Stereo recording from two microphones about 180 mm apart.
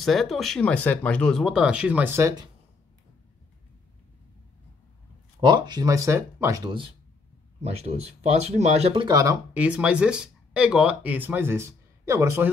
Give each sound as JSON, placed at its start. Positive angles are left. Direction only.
{"t": 0.0, "sound": "speech", "side_deg": 0}
{"t": 5.4, "sound": "speech", "side_deg": -25}
{"t": 7.6, "sound": "speech", "side_deg": -35}